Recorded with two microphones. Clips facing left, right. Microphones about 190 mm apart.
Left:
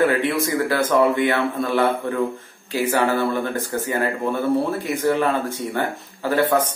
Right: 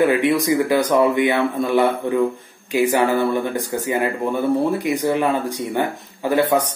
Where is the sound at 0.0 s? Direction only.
15° right (ahead or behind).